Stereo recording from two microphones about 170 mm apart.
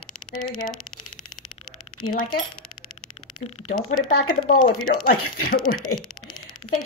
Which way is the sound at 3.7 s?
55° left (ahead or behind).